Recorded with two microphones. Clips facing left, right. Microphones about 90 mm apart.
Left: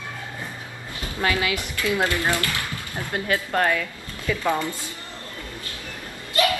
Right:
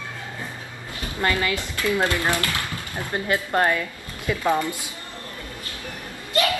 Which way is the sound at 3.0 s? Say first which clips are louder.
Right 1 dB; 20° right (ahead or behind).